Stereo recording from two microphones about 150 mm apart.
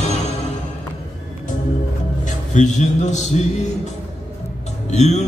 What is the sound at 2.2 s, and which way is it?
A man's voice, 55° left (ahead or behind).